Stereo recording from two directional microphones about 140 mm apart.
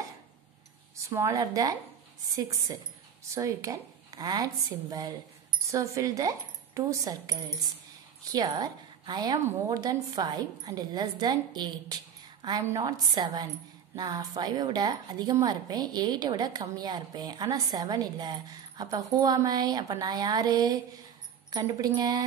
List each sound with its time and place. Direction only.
1.1 s a woman's voice: 25° right (ahead or behind)
3.3 s a woman's voice: 25° right (ahead or behind)